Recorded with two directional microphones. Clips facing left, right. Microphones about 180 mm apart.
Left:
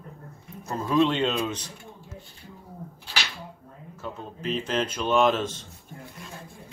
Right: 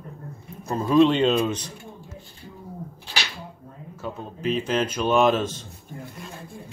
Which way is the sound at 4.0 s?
10° right (ahead or behind).